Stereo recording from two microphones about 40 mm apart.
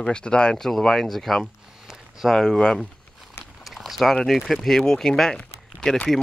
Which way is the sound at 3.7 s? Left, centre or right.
Centre.